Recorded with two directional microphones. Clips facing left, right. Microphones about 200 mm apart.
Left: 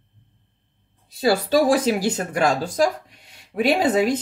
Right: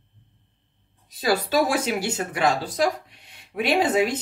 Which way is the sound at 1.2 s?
30° left (ahead or behind).